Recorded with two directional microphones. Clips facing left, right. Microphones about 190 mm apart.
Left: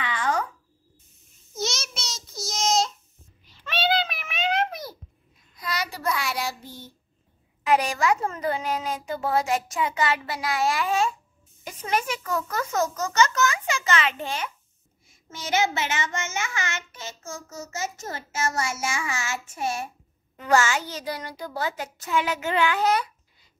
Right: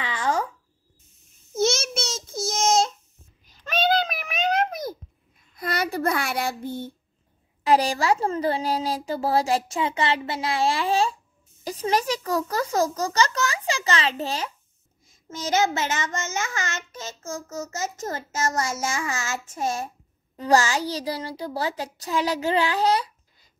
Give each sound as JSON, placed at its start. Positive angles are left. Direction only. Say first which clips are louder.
{"t": 0.0, "sound": "a sound", "louder": "right 1 dB", "side_deg": -30}
{"t": 1.5, "sound": "child singing", "louder": "right 8 dB", "side_deg": -50}
{"t": 3.4, "sound": "a sound", "louder": "right 3 dB", "side_deg": -45}
{"t": 5.6, "sound": "child singing", "louder": "right 6 dB", "side_deg": -55}
{"t": 7.6, "sound": "a woman's voice", "louder": "right 2 dB", "side_deg": -35}
{"t": 20.3, "sound": "a woman's voice", "louder": "right 2 dB", "side_deg": -35}